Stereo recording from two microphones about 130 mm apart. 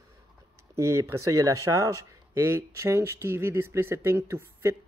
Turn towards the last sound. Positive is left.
turn(degrees=-20)  # may be behind; listen again after turning